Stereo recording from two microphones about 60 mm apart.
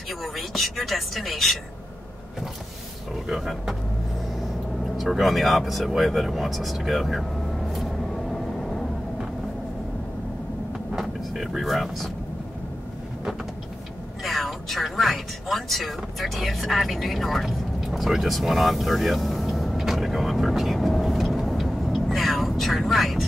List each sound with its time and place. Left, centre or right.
0.2 s speech: centre
3.3 s speech: centre
4.9 s speech: centre
10.9 s vehicle: centre
11.4 s speech: centre
14.2 s a sound: centre